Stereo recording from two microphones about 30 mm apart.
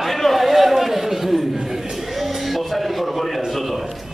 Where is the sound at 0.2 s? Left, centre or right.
Centre.